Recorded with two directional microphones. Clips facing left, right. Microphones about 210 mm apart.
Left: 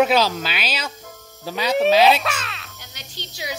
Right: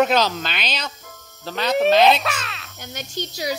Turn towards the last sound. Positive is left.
turn(degrees=-45)  # may be behind; listen again after turning